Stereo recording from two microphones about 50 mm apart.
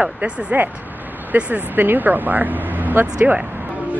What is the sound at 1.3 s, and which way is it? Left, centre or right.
Speech, right.